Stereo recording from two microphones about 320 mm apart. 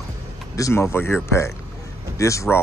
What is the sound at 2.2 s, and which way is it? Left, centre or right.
Speech, centre.